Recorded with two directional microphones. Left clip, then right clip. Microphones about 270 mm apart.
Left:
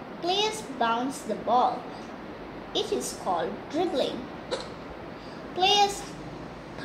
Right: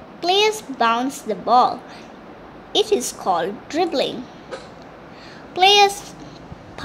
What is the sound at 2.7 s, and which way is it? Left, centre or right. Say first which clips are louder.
A woman's voice: right 10 dB; right.